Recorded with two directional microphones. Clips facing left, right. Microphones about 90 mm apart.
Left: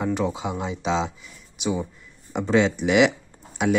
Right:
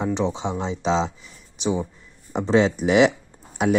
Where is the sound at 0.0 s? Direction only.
20° right (ahead or behind).